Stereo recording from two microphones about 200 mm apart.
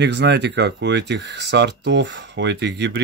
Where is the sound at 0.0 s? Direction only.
60° right (ahead or behind).